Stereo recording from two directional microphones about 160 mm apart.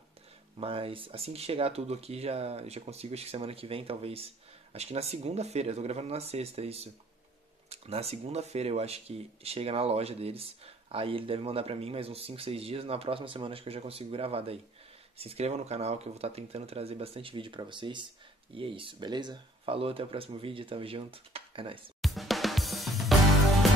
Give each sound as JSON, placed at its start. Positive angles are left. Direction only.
{"t": 0.6, "sound": "speech", "side_deg": -35}
{"t": 22.0, "sound": "drum kit", "side_deg": 0}